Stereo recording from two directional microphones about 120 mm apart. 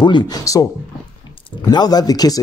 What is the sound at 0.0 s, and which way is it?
Speech, 35° left (ahead or behind).